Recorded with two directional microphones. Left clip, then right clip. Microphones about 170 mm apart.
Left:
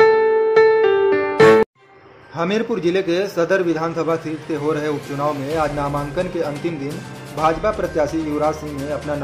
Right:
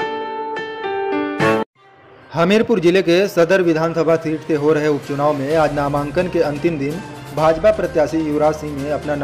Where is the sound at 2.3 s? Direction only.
25° right (ahead or behind).